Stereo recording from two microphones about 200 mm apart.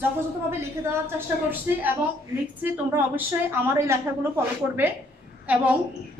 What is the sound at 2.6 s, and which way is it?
A woman's voice, 10° right (ahead or behind).